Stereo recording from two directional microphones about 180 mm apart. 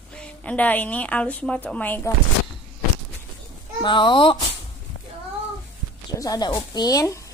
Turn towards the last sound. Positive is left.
turn(degrees=20)  # may be behind; listen again after turning